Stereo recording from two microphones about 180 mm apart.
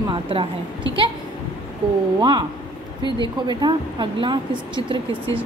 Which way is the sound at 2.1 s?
25° right (ahead or behind).